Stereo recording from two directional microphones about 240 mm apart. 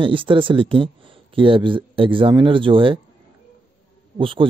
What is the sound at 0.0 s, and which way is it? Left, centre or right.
Speech, right.